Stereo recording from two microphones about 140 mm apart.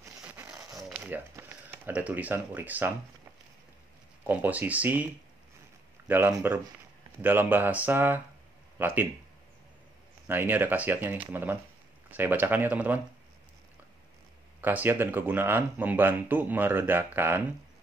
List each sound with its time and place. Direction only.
0.4 s a sound: 20° right (ahead or behind)
0.9 s speech: 15° right (ahead or behind)
4.2 s speech: 10° right (ahead or behind)
10.2 s speech: 15° right (ahead or behind)
14.6 s speech: 15° right (ahead or behind)